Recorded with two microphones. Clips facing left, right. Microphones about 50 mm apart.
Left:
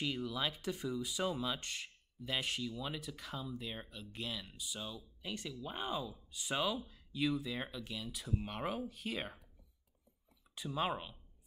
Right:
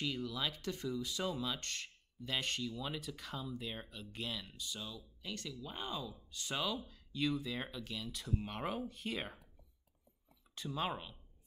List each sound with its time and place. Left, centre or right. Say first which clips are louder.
0.0 s speech: left 1 dB; centre
4.6 s speech: left 1 dB; centre
10.5 s speech: left 2 dB; centre